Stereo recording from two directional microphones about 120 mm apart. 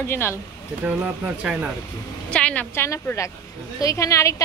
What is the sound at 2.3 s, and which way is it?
Speech, 10° left (ahead or behind).